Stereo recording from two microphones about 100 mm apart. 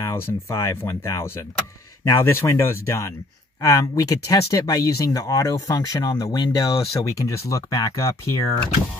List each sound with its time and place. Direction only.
0.0 s speech: 25° left (ahead or behind)